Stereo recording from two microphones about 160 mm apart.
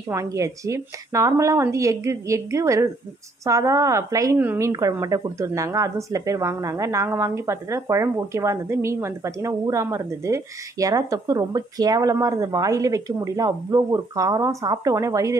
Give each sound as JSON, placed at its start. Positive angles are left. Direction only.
{"t": 0.1, "sound": "a woman's voice", "side_deg": -20}